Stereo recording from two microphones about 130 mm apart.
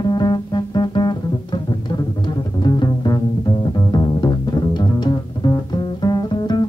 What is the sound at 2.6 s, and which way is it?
Music, 30° left (ahead or behind).